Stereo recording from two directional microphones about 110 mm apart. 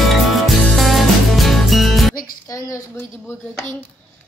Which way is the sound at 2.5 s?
30° left (ahead or behind).